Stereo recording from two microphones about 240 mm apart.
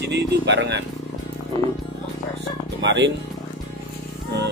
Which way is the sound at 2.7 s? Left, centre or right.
Right.